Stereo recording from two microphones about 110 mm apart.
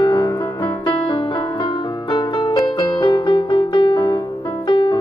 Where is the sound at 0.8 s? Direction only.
50° left (ahead or behind).